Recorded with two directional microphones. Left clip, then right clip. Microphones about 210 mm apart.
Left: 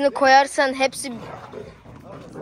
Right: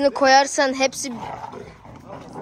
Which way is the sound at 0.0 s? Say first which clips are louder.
Even; 15° right (ahead or behind).